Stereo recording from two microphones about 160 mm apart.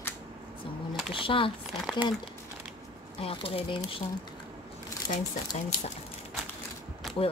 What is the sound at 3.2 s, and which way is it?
Speech, 35° left (ahead or behind).